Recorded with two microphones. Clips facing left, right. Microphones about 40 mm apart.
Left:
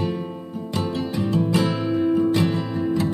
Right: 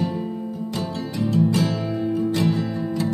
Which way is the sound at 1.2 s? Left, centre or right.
Left.